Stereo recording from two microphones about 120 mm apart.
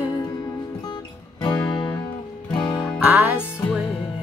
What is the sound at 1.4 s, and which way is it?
Music, 40° left (ahead or behind).